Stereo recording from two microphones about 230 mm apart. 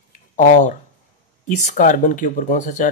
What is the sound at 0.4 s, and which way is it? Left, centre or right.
Speech, left.